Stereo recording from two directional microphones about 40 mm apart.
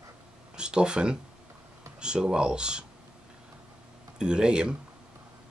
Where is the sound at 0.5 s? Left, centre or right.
Right.